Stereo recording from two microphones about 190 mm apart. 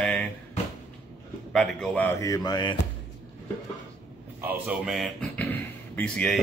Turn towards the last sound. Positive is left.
turn(degrees=5)  # may be behind; listen again after turning